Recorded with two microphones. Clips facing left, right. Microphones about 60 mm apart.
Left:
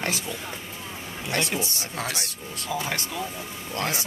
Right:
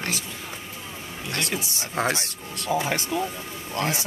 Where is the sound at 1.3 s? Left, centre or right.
Left.